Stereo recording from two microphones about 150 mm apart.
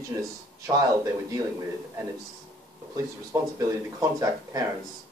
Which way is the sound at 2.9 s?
20° right (ahead or behind).